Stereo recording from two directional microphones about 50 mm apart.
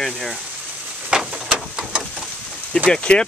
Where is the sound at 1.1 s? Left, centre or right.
Centre.